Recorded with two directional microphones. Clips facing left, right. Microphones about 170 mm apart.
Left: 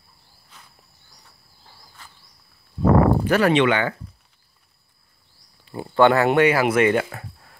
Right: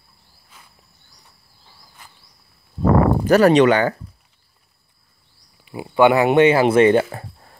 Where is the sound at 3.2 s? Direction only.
40° right (ahead or behind).